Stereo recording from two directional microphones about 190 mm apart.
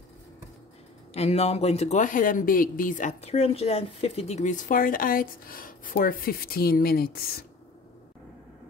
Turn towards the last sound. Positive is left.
turn(degrees=50)  # may be behind; listen again after turning